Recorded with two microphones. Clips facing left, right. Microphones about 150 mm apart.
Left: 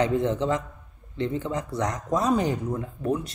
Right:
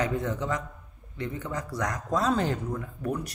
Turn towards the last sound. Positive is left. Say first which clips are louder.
# left 4 dB
turn(degrees=25)  # may be behind; listen again after turning